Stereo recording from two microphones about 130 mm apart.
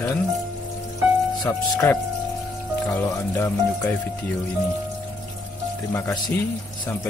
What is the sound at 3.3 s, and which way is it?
Speech, 15° left (ahead or behind).